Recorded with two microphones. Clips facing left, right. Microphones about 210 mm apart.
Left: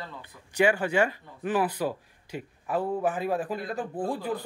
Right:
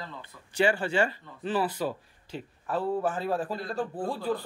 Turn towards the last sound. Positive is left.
turn(degrees=15)  # may be behind; listen again after turning